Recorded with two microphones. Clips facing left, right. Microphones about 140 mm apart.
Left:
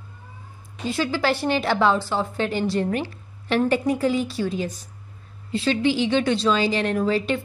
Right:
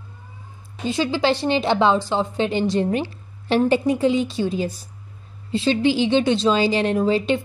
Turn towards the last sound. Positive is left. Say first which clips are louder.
# right 3 dB
turn(degrees=-25)  # may be behind; listen again after turning